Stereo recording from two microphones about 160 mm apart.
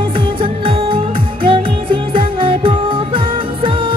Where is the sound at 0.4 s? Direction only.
35° right (ahead or behind).